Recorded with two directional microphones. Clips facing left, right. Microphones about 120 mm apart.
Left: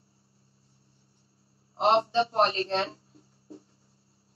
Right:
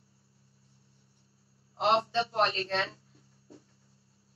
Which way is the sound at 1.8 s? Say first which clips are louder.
Left 4 dB; 30° left (ahead or behind).